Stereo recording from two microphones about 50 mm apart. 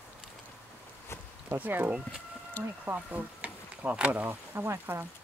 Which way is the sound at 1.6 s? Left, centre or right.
Right.